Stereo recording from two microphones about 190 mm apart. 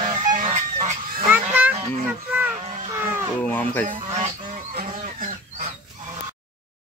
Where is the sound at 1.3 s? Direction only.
10° right (ahead or behind).